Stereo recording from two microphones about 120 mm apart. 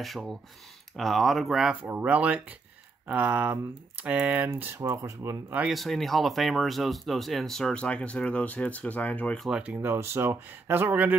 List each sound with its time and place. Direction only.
0.0 s speech: centre (ahead or behind); by 5.4 s 25° right (ahead or behind)
5.7 s speech: centre (ahead or behind)
9.4 s speech: 5° right (ahead or behind)